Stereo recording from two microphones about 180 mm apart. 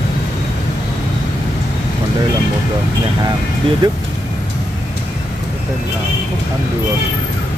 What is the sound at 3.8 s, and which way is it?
Speech, 25° right (ahead or behind).